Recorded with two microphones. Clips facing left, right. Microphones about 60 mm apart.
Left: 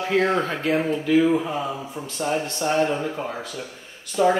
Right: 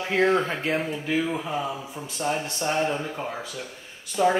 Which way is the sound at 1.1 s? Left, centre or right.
Centre.